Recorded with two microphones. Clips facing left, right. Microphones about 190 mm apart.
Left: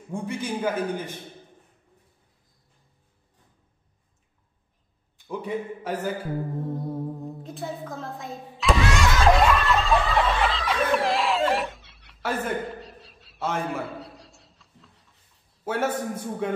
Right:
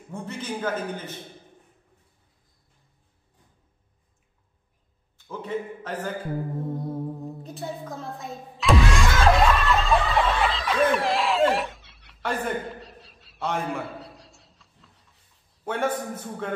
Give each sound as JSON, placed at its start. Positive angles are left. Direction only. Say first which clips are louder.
{"t": 0.1, "sound": "a man's voice", "louder": "left 3 dB", "side_deg": 10}
{"t": 5.1, "sound": "a man's voice", "louder": "left 1 dB", "side_deg": 15}
{"t": 6.6, "sound": "singing bowl", "louder": "even", "side_deg": 0}